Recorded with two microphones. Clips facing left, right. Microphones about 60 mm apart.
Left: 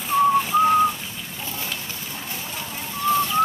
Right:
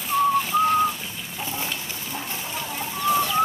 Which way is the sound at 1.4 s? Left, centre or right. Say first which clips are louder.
Right 3 dB; centre.